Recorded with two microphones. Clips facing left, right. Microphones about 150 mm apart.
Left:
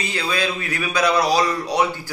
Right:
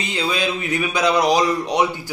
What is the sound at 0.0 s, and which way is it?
A man's voice, 20° right (ahead or behind).